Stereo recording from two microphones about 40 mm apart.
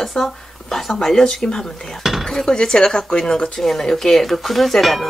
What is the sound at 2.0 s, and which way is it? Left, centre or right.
Dishes, centre.